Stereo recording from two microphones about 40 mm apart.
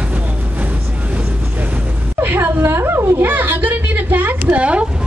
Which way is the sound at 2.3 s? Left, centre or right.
Right.